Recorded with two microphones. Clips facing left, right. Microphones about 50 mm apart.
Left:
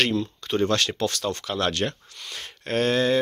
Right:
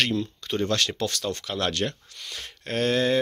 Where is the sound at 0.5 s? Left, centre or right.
Left.